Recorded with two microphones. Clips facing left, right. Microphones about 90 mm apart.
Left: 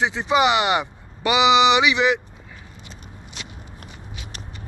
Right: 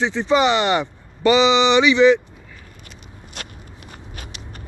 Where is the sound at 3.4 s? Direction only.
50° right (ahead or behind).